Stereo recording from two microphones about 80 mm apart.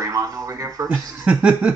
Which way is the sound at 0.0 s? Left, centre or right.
Right.